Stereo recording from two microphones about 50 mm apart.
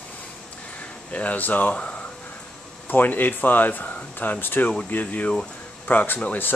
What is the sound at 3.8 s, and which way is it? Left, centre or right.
Speech, left.